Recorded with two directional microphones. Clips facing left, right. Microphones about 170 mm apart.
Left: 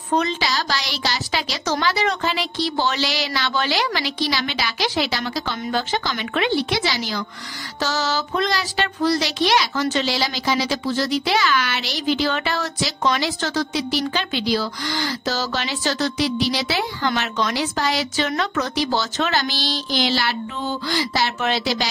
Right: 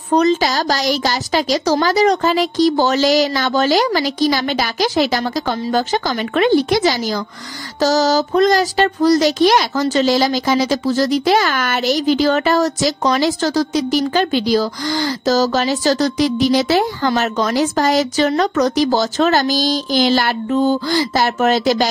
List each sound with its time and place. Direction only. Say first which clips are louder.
0.1 s speech: right 7 dB; 40° right (ahead or behind)